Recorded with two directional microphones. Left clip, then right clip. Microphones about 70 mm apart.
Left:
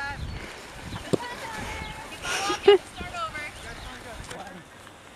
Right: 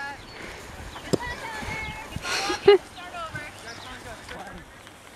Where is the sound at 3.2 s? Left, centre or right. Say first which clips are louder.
Left 3 dB; left.